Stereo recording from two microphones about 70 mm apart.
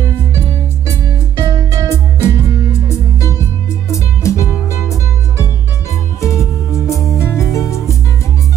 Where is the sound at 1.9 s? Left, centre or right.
Left.